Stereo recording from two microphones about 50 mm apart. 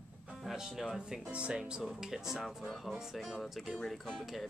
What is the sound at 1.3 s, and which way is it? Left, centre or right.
Speech, centre.